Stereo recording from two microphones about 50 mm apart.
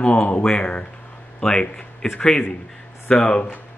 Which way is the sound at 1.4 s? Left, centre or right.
Centre.